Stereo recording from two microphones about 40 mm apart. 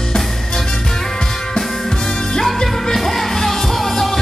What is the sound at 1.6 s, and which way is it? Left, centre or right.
Music, centre.